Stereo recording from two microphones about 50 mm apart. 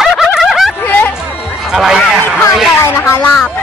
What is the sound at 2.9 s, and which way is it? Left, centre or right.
Speech, left.